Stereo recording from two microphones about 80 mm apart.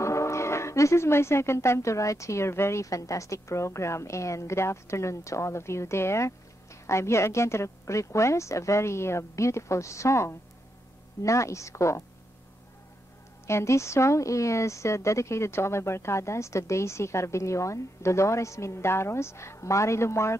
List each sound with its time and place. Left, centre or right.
0.0 s speech: left
13.5 s speech: left